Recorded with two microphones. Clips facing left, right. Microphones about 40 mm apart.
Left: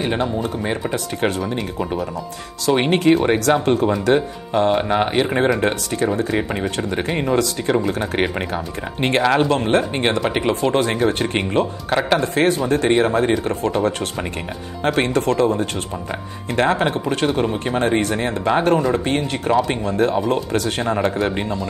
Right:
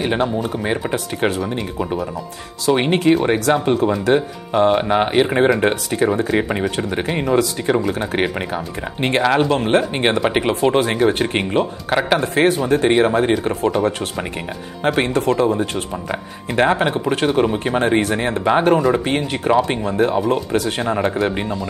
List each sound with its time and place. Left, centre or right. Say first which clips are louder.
0.0 s speech: right 2 dB; centre
1.2 s speech: right 1 dB; centre
9.7 s speech: right 1 dB; centre
20.2 s speech: right 1 dB; centre